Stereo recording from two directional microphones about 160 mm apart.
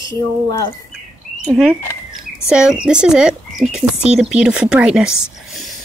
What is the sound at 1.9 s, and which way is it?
Bird, 15° left (ahead or behind).